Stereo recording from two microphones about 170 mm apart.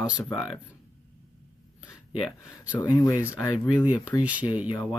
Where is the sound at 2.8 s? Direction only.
25° left (ahead or behind).